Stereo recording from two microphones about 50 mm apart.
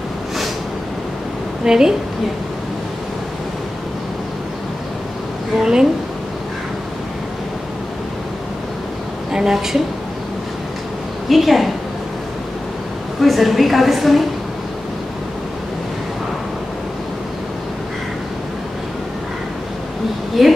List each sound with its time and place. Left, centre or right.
1.6 s a woman's voice: centre
5.6 s a woman's voice: centre
9.3 s a woman's voice: centre
11.2 s a woman's voice: centre
13.2 s a woman's voice: centre
20.4 s a woman's voice: centre